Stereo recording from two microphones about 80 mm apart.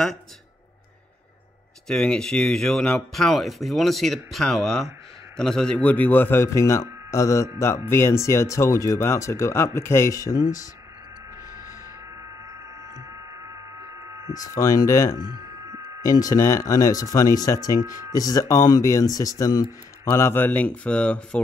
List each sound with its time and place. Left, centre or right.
1.9 s a man's voice: centre
5.8 s speech: left
6.4 s speech: left
14.3 s speech: left
20.1 s speech: left